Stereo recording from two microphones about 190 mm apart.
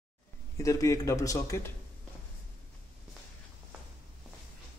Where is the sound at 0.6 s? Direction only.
15° left (ahead or behind).